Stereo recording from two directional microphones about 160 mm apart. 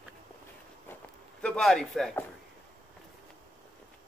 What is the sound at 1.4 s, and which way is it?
Speech, 5° left (ahead or behind).